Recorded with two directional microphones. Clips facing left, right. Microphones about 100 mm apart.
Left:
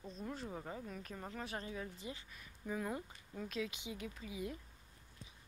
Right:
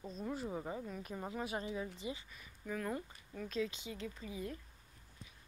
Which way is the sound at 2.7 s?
15° left (ahead or behind).